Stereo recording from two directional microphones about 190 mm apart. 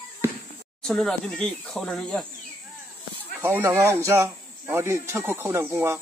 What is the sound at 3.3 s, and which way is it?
Speech, 10° right (ahead or behind).